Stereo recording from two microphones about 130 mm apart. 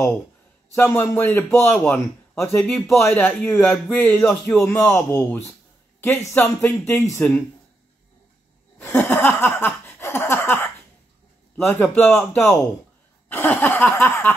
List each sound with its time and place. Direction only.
0.7 s speech: 15° left (ahead or behind)
8.7 s a sound: 10° left (ahead or behind)
11.5 s speech: 15° left (ahead or behind)
13.3 s speech: 15° left (ahead or behind)